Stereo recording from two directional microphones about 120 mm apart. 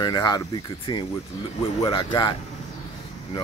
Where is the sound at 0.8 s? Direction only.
50° left (ahead or behind).